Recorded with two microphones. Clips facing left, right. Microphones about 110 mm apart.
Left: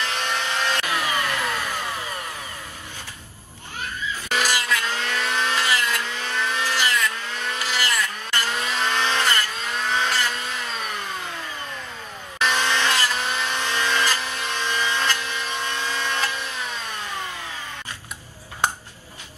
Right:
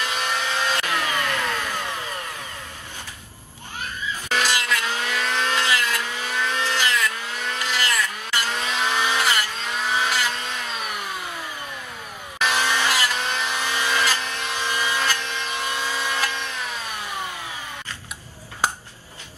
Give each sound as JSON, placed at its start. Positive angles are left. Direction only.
{"t": 0.0, "sound": "vehicle", "side_deg": -10}
{"t": 0.8, "sound": "a sound", "side_deg": 10}
{"t": 4.3, "sound": "a sound", "side_deg": 5}
{"t": 4.8, "sound": "vehicle", "side_deg": -10}
{"t": 5.2, "sound": "vehicle", "side_deg": 5}
{"t": 6.0, "sound": "vehicle", "side_deg": -10}
{"t": 6.4, "sound": "vehicle", "side_deg": 5}
{"t": 12.4, "sound": "vehicle", "side_deg": -10}
{"t": 15.6, "sound": "a sound", "side_deg": -10}
{"t": 16.9, "sound": "vehicle", "side_deg": -15}